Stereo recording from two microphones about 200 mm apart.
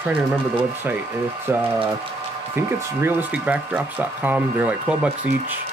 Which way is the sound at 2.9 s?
10° right (ahead or behind).